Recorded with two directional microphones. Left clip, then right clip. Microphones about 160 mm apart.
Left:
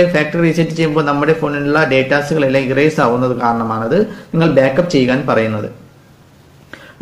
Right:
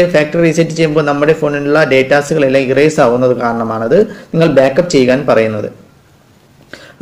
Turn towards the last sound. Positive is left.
turn(degrees=-25)  # may be behind; listen again after turning